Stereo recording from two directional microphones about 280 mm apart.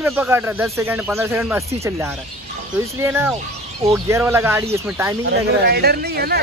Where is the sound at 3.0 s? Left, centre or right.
Centre.